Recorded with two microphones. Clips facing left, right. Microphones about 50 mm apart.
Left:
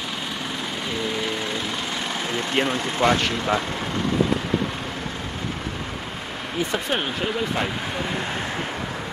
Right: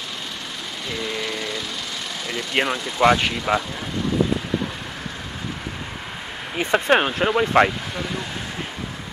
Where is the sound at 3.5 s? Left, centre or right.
Right.